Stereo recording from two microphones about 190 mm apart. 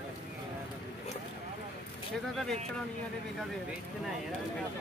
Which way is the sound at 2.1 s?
Centre (ahead or behind).